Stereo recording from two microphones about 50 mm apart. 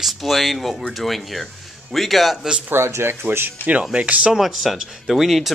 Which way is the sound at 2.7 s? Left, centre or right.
Right.